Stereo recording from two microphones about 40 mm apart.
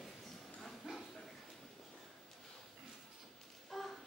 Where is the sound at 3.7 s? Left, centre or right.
Centre.